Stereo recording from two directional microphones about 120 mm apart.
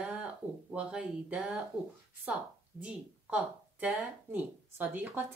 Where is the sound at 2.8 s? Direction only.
10° right (ahead or behind).